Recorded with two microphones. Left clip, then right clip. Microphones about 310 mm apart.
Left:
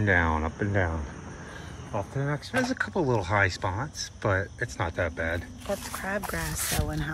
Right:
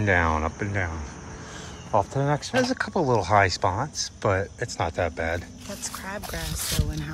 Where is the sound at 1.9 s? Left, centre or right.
Centre.